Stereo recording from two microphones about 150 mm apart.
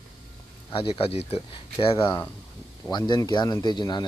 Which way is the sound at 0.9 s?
40° left (ahead or behind).